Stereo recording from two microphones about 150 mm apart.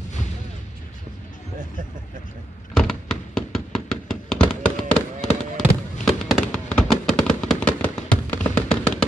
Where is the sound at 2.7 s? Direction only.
5° left (ahead or behind).